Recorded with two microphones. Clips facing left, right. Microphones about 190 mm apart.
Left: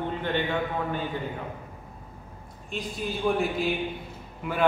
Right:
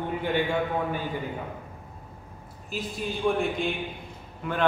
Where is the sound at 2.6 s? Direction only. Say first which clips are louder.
Even; centre (ahead or behind).